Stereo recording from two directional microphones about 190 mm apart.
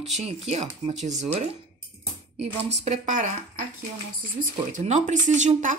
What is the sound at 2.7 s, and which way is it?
Speech, 35° right (ahead or behind).